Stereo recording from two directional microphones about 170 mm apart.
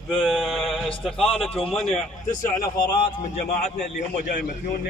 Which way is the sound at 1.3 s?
35° left (ahead or behind).